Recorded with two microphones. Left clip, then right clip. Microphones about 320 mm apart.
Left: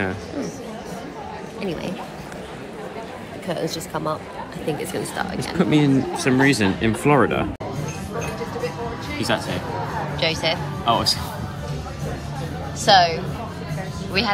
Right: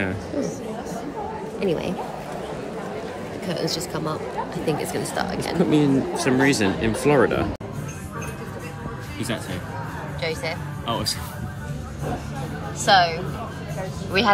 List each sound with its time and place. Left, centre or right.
3.9 s speech: centre
5.6 s speech: left
10.2 s speech: centre
12.8 s speech: centre